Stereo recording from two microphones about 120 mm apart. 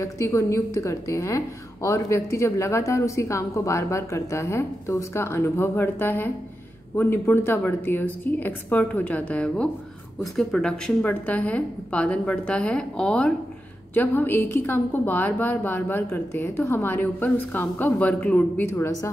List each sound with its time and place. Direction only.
0.0 s a woman's voice: 25° left (ahead or behind)